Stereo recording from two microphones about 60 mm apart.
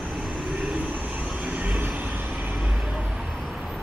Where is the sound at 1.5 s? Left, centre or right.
Right.